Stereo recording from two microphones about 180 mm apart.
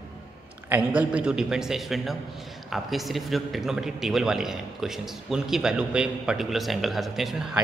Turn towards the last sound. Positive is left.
turn(degrees=0)  # may be behind; listen again after turning